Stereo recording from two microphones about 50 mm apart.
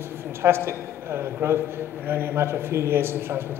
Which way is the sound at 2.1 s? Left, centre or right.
Right.